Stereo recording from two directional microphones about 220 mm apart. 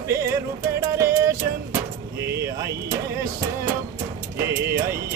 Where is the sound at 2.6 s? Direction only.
15° right (ahead or behind).